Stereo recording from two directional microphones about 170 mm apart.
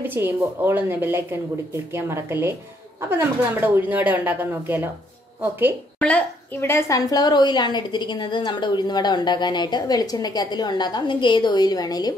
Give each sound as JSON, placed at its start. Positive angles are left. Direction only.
{"t": 0.0, "sound": "speech", "side_deg": -10}
{"t": 5.9, "sound": "a woman's voice", "side_deg": 10}